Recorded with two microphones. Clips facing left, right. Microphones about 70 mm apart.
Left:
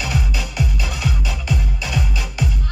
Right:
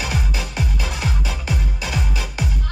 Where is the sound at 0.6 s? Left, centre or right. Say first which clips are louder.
Left 2 dB; right.